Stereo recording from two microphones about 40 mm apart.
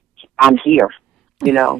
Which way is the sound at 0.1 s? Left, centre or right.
Centre.